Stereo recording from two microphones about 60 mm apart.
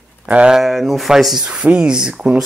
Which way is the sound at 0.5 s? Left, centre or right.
Centre.